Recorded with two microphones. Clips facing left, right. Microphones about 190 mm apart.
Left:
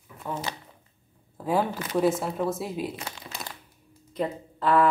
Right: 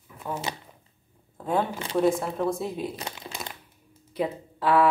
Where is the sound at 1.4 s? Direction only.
5° left (ahead or behind).